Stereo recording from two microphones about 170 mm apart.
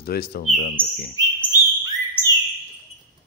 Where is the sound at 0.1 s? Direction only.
65° left (ahead or behind).